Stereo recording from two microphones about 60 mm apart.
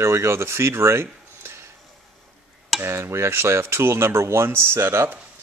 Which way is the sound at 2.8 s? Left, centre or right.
Right.